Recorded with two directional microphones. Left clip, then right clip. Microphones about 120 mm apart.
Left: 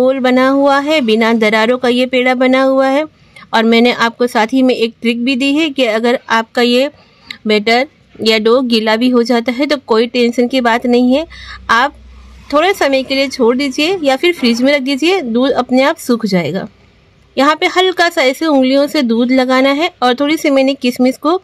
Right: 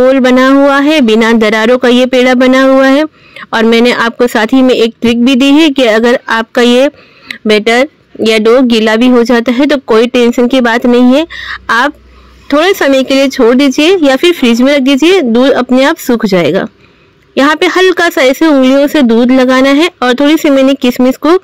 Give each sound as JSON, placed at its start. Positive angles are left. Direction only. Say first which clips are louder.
{"t": 0.1, "sound": "speech", "louder": "right 5 dB", "side_deg": -40}